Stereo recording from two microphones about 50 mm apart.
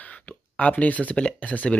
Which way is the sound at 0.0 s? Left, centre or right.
Left.